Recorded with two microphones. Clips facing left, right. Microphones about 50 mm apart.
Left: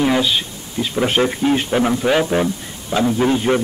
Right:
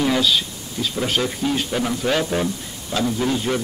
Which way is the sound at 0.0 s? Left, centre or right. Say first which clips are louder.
Left 2 dB; left.